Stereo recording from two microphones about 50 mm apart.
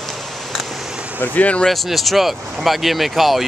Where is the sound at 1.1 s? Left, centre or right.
Left.